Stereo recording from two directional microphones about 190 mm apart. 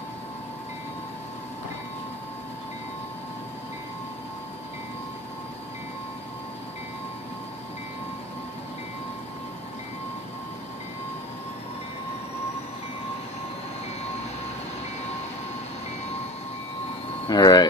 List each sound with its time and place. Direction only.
17.3 s speech: 20° left (ahead or behind)